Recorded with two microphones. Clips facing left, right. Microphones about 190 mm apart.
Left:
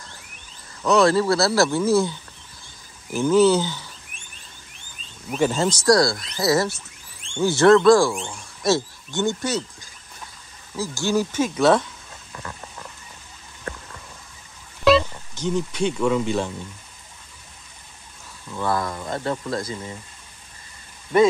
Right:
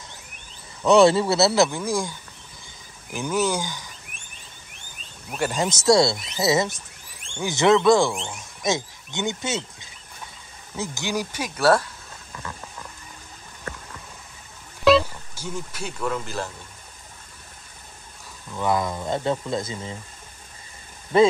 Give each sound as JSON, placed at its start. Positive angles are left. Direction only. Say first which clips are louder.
{"t": 0.8, "sound": "speech", "louder": "right 2 dB", "side_deg": -25}
{"t": 5.3, "sound": "speech", "louder": "left 4 dB", "side_deg": -10}
{"t": 14.9, "sound": "speech", "louder": "even", "side_deg": -5}
{"t": 18.5, "sound": "speech", "louder": "right 1 dB", "side_deg": -15}